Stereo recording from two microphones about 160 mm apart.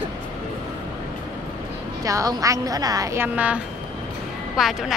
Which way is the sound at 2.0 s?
20° right (ahead or behind).